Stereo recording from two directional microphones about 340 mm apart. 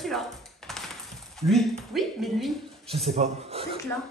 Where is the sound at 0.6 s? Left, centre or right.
Centre.